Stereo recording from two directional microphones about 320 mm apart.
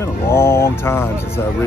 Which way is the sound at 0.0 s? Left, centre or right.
Centre.